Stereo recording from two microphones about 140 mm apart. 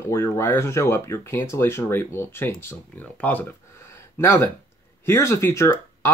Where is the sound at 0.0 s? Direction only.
20° left (ahead or behind).